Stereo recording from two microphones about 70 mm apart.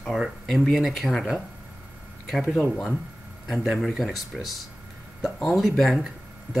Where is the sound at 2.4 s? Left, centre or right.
Centre.